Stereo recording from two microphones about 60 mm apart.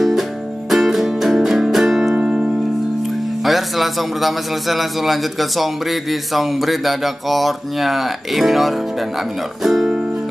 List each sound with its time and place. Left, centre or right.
0.7 s music: centre
3.4 s a man's voice: centre